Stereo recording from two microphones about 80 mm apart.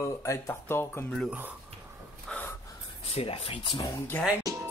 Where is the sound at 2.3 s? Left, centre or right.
Centre.